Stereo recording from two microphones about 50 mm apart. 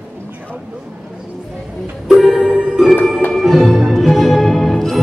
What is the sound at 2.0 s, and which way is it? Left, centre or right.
Music, centre.